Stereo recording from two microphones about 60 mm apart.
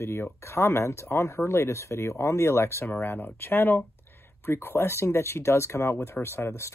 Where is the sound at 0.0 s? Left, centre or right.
Left.